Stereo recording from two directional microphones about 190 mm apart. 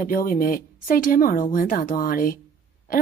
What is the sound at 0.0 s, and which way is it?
Speech, 45° left (ahead or behind).